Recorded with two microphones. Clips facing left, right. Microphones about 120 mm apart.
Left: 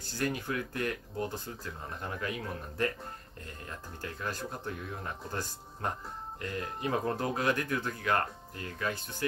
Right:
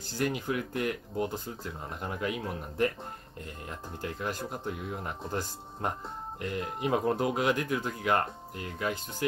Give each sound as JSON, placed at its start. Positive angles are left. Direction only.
{"t": 0.2, "sound": "speech", "side_deg": -15}